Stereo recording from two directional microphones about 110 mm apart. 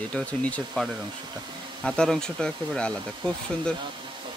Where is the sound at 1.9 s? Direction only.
5° left (ahead or behind).